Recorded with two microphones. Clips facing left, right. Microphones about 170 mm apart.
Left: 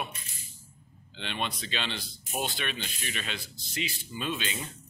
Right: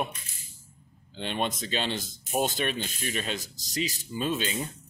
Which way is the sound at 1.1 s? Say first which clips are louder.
Right 5 dB; 45° right (ahead or behind).